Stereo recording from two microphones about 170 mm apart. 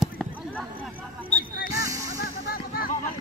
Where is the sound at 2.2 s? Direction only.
60° left (ahead or behind).